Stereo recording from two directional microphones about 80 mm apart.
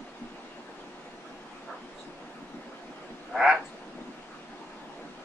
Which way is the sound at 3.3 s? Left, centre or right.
Centre.